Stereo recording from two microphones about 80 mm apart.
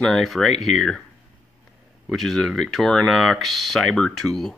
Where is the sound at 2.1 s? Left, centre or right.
Centre.